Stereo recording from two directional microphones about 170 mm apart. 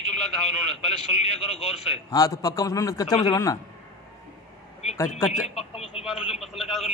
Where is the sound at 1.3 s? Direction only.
35° left (ahead or behind).